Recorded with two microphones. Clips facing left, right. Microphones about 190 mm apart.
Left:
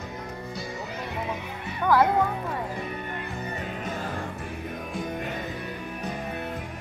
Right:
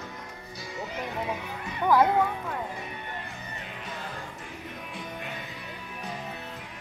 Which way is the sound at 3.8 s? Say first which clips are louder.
Left 4 dB; 50° left (ahead or behind).